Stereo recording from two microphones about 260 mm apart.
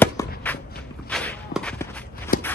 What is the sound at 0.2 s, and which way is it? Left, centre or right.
Walk, centre.